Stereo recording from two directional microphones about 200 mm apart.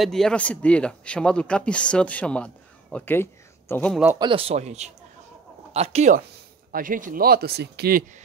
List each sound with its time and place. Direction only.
0.0 s a man's voice: centre (ahead or behind)
4.2 s speech: 25° right (ahead or behind); by 8.0 s 55° right (ahead or behind)